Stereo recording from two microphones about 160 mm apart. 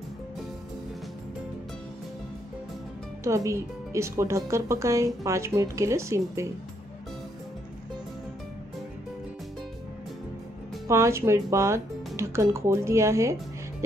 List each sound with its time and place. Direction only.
3.3 s speech: 20° right (ahead or behind)
10.9 s speech: 20° right (ahead or behind)